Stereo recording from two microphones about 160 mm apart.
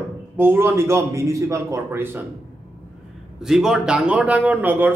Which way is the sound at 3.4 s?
Centre (ahead or behind).